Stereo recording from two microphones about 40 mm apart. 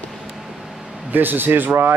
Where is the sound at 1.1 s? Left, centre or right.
Right.